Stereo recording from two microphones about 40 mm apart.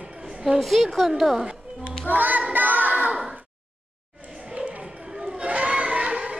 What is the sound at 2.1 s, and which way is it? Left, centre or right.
Music, right.